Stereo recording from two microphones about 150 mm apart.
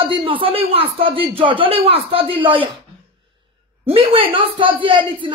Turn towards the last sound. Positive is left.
turn(degrees=-35)  # may be behind; listen again after turning